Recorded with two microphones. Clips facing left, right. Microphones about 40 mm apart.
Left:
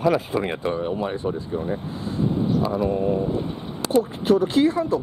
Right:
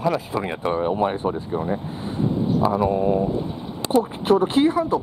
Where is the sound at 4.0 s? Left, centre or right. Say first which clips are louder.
Right 1 dB; right.